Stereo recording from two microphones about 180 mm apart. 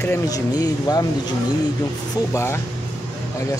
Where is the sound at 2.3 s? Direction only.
15° left (ahead or behind).